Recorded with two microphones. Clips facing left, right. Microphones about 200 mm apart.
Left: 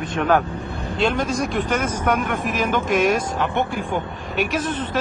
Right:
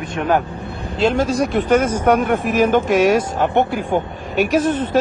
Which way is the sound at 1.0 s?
30° right (ahead or behind).